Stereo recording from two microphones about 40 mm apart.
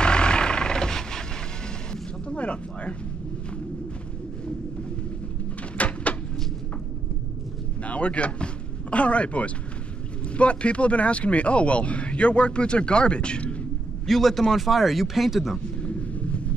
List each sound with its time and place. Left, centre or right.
0.0 s vehicle: left
2.2 s a sound: left
5.8 s door: left
7.8 s speech: left
14.0 s speech: centre
15.8 s a sound: left